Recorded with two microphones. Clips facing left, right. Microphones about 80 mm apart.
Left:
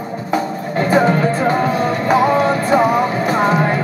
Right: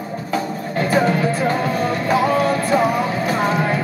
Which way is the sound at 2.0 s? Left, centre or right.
Left.